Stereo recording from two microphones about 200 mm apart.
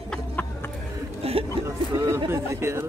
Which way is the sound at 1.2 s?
30° right (ahead or behind).